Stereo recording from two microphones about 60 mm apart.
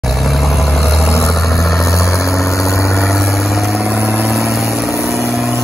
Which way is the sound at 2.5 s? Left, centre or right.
Left.